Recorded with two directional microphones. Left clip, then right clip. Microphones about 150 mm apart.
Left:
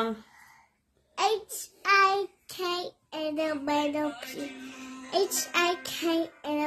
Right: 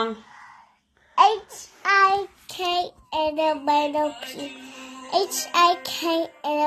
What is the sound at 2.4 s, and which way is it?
Child singing, 15° right (ahead or behind).